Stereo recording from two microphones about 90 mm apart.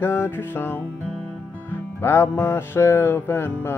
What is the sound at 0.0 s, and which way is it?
Music, 25° left (ahead or behind).